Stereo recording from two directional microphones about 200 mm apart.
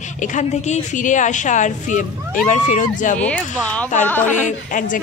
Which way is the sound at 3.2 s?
5° left (ahead or behind).